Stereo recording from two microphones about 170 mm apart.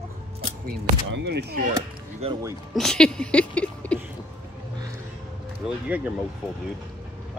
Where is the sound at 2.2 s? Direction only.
35° right (ahead or behind).